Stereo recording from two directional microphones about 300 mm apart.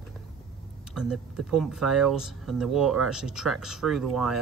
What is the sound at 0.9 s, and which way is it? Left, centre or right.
Speech, centre.